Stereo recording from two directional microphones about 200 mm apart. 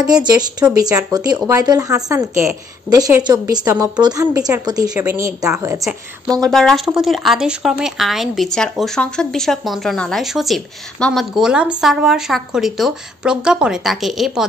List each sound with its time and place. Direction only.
0.0 s a woman's voice: 20° right (ahead or behind)
6.5 s speech: centre (ahead or behind)